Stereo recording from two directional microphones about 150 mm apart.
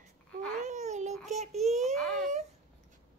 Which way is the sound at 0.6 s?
50° right (ahead or behind).